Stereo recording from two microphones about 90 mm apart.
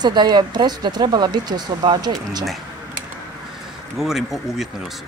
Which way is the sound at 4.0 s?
5° right (ahead or behind).